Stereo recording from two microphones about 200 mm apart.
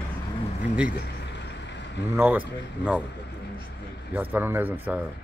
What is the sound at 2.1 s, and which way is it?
Speech, 10° right (ahead or behind).